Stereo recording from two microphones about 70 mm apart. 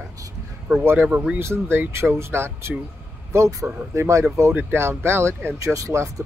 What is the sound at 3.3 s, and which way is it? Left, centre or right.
Speech, right.